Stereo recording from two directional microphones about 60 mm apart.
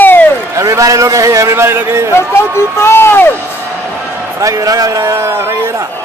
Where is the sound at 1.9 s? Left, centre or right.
Right.